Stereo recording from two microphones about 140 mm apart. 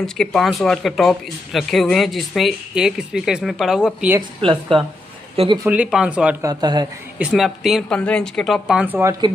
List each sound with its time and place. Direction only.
0.0 s speech: 5° left (ahead or behind)
4.4 s a woman's voice: 40° right (ahead or behind)
5.7 s speech: 10° right (ahead or behind)
6.4 s speech: 30° right (ahead or behind)
7.2 s speech: 5° right (ahead or behind)